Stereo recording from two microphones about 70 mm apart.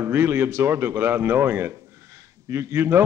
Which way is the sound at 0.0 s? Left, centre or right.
Right.